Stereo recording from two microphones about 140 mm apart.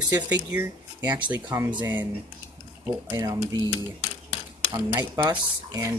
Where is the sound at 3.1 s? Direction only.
30° right (ahead or behind).